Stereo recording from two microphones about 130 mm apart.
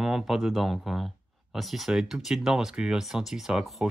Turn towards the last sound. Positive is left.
turn(degrees=0)  # may be behind; listen again after turning